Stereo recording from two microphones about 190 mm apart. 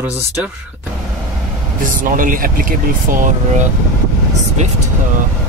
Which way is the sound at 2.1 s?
45° right (ahead or behind).